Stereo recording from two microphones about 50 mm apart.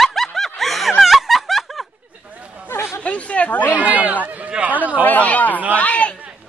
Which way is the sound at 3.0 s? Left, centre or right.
Left.